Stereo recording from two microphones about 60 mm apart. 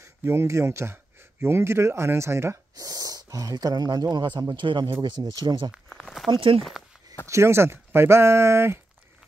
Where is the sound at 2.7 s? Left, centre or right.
Right.